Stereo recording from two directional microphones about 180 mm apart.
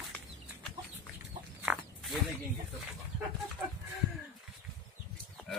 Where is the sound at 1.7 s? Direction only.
Centre (ahead or behind).